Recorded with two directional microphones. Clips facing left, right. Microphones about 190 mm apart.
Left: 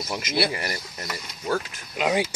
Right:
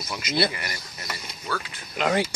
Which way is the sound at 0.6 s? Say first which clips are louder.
Left 5 dB; 40° left (ahead or behind).